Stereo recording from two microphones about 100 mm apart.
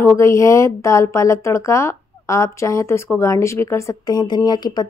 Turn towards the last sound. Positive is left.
turn(degrees=45)  # may be behind; listen again after turning